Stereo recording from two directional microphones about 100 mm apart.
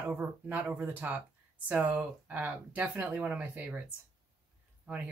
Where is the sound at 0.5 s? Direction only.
15° right (ahead or behind).